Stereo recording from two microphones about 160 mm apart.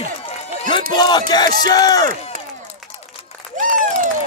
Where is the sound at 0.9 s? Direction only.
25° left (ahead or behind).